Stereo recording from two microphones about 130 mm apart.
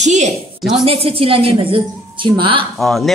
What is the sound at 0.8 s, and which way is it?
A woman's voice, 45° right (ahead or behind).